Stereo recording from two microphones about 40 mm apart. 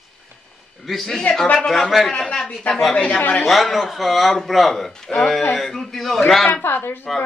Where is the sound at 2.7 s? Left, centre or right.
Left.